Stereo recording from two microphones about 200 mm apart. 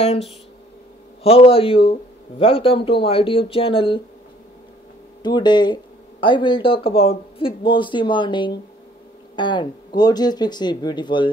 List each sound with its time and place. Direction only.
1.2 s speech: 30° left (ahead or behind)
5.2 s speech: 20° left (ahead or behind)